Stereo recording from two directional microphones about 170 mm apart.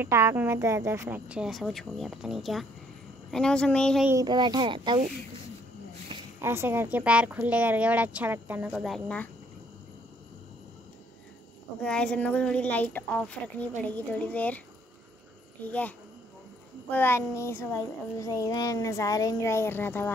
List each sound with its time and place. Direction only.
0.0 s a woman's voice: 15° right (ahead or behind); by 4.0 s 5° left (ahead or behind)
4.1 s speech: 25° right (ahead or behind)
6.4 s speech: 15° right (ahead or behind)
8.8 s a woman's voice: 5° left (ahead or behind)
11.8 s a child's voice: 5° left (ahead or behind)
15.6 s a child's voice: 10° left (ahead or behind)
16.9 s a child's voice: 15° left (ahead or behind)